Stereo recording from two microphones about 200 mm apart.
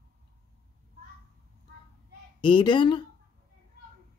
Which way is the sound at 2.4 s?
25° left (ahead or behind).